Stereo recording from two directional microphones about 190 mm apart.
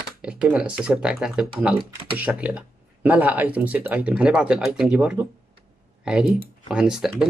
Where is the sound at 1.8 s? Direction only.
30° right (ahead or behind).